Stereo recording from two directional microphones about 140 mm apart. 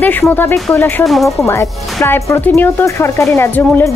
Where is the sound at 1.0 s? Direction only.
Centre (ahead or behind).